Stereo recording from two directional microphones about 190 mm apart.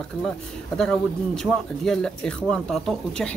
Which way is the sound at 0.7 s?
5° left (ahead or behind).